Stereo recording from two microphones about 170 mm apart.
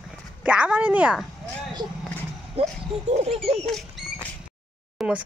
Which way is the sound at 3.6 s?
Centre (ahead or behind).